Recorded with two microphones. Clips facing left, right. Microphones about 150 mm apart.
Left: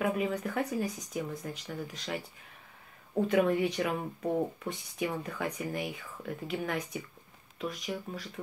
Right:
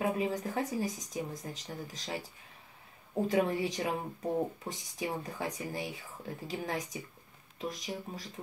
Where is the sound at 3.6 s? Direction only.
35° right (ahead or behind).